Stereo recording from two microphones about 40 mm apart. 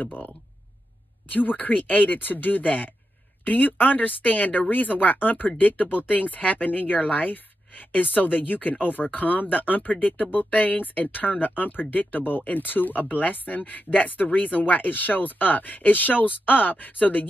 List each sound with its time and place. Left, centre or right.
1.3 s speech: left